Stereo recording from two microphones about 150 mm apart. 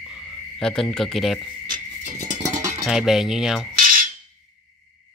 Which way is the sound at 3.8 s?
65° right (ahead or behind).